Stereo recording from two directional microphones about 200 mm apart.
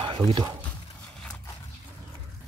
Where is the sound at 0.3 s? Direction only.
20° right (ahead or behind).